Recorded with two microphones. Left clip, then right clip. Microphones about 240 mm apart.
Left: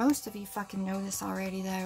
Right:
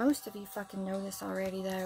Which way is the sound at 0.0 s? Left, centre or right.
Centre.